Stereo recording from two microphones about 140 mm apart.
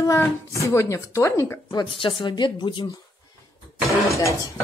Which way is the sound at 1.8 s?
35° left (ahead or behind).